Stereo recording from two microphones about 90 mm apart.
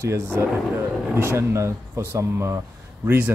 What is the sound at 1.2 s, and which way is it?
Speech, 30° right (ahead or behind).